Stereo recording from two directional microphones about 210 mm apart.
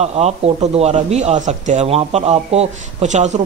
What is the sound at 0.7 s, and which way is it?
A man's voice, 30° right (ahead or behind).